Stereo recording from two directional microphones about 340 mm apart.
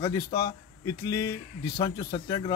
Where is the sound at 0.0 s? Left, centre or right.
Centre.